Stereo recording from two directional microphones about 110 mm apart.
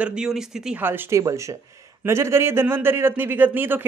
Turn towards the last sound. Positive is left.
turn(degrees=-20)  # may be behind; listen again after turning